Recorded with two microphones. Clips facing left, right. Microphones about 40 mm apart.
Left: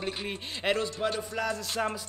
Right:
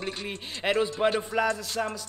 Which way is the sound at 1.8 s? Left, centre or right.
Centre.